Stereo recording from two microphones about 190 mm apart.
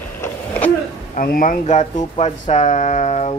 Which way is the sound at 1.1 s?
45° left (ahead or behind).